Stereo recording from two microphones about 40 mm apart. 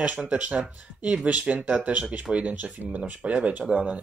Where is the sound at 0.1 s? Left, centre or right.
Right.